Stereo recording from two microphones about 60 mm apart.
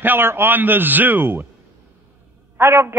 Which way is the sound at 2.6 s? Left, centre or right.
Right.